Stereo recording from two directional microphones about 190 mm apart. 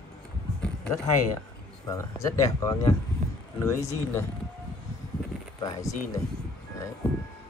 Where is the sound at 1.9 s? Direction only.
20° left (ahead or behind).